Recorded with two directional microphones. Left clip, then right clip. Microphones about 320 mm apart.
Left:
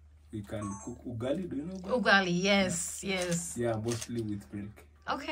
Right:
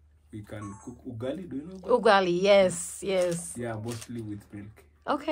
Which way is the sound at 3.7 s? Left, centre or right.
Left.